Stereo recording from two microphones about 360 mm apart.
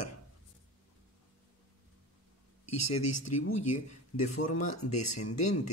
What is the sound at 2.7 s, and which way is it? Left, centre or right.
Speech, left.